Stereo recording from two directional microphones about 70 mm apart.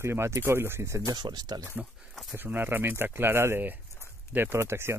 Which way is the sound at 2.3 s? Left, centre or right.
Right.